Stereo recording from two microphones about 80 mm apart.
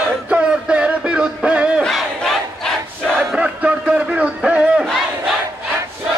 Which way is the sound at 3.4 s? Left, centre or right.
Centre.